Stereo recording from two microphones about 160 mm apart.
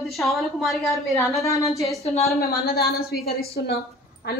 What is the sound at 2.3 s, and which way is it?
A woman's voice, 75° left (ahead or behind).